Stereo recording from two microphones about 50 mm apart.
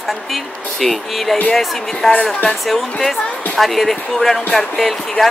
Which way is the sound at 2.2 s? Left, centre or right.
Left.